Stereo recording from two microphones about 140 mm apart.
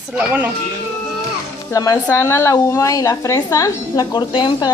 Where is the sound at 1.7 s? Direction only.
25° left (ahead or behind).